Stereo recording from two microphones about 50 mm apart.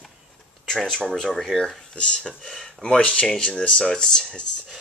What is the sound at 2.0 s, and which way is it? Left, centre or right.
Speech, centre.